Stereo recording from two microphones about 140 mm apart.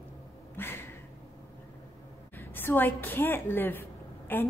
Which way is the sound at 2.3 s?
15° left (ahead or behind).